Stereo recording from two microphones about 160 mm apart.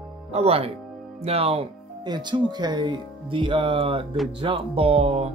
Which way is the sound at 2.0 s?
25° right (ahead or behind).